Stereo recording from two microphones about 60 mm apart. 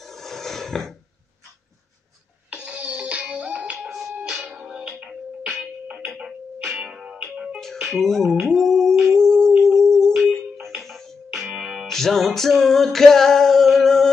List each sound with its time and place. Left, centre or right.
0.0 s a sound: centre
2.5 s music: centre
6.8 s music: centre
11.4 s music: centre